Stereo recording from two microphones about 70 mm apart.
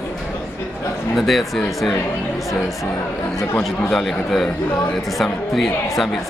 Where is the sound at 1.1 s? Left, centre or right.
Centre.